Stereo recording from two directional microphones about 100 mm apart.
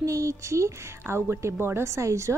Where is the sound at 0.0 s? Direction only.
30° right (ahead or behind).